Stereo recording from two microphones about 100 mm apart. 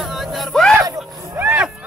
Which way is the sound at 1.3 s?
20° right (ahead or behind).